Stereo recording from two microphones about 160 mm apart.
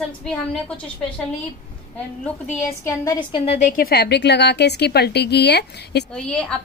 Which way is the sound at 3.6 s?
60° left (ahead or behind).